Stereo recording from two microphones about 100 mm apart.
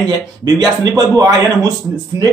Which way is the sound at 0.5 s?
40° right (ahead or behind).